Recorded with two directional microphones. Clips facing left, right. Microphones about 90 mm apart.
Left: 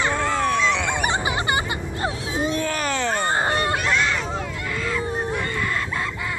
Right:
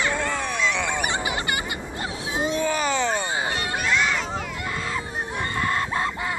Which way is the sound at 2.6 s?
10° right (ahead or behind).